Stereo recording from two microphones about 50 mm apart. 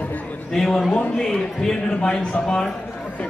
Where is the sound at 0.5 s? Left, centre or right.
Centre.